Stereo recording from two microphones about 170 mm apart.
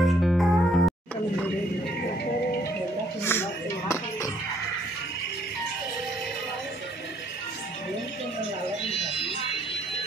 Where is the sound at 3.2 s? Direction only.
15° left (ahead or behind).